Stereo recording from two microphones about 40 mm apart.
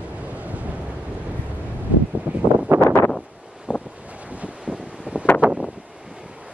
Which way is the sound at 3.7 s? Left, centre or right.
Right.